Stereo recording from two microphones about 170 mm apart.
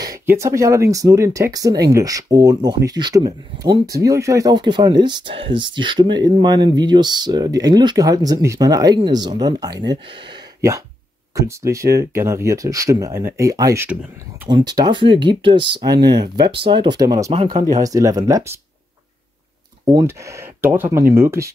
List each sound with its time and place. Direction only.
0.0 s speech: 20° right (ahead or behind)
11.3 s speech: 15° right (ahead or behind)
17.8 s speech: 20° right (ahead or behind)
19.9 s speech: 20° right (ahead or behind)